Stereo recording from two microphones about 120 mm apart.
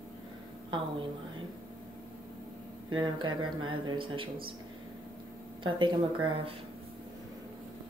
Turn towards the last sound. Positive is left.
turn(degrees=-45)  # may be behind; listen again after turning